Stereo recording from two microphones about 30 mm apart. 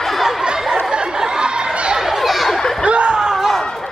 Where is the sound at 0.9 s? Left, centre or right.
Right.